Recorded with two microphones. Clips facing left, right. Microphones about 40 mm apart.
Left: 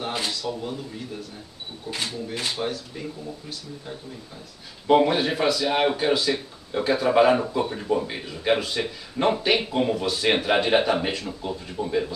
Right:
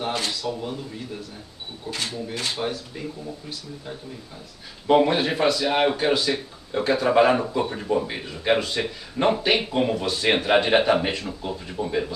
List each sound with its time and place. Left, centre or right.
0.5 s a sound: centre
1.9 s speech: centre
2.5 s speech: centre